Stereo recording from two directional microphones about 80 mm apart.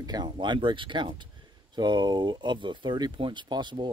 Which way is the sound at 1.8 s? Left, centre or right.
Right.